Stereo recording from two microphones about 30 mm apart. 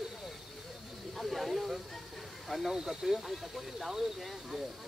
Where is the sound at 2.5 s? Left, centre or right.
Centre.